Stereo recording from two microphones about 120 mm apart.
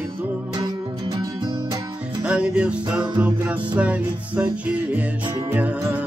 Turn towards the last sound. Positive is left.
turn(degrees=-15)  # may be behind; listen again after turning